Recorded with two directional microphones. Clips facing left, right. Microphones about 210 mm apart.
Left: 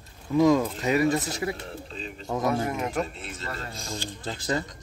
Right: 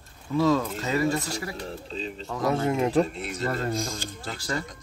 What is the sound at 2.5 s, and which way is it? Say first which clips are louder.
Speech: right 7 dB; 25° right (ahead or behind).